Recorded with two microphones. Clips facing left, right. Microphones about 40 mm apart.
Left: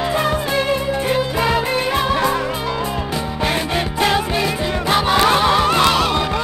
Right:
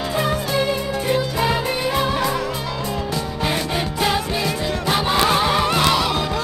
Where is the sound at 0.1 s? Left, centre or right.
Centre.